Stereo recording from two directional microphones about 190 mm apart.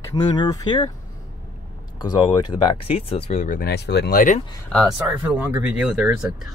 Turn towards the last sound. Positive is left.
turn(degrees=-5)  # may be behind; listen again after turning